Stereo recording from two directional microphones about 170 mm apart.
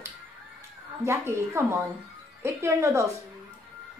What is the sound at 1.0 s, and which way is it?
Speech, 15° right (ahead or behind).